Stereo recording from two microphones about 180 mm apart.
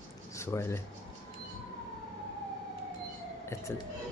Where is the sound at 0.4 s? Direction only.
15° left (ahead or behind).